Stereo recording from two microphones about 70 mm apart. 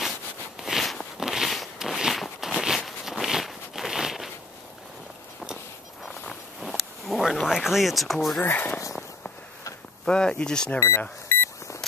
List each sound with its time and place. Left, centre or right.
0.6 s a sound: centre
6.6 s speech: centre
8.4 s speech: left
10.0 s speech: centre
11.0 s beep: left